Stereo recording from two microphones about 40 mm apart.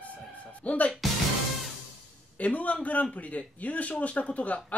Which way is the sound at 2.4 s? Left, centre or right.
Left.